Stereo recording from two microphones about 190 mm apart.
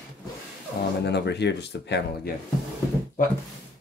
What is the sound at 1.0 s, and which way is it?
Speech, 65° left (ahead or behind).